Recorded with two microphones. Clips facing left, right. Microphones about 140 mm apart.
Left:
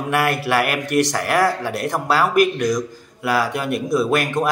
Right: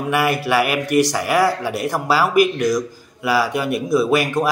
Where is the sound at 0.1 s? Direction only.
Centre (ahead or behind).